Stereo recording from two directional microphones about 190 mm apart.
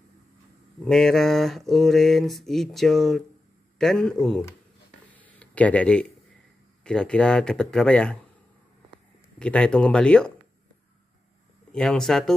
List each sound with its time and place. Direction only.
0.8 s speech: centre (ahead or behind)
5.0 s a sound: 10° left (ahead or behind)
6.8 s speech: 5° left (ahead or behind)
9.4 s speech: 5° left (ahead or behind)
11.7 s speech: 5° left (ahead or behind)